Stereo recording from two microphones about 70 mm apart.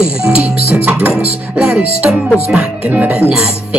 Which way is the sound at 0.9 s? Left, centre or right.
Right.